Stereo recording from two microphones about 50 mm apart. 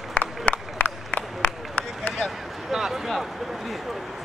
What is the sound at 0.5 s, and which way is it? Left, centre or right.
Run, left.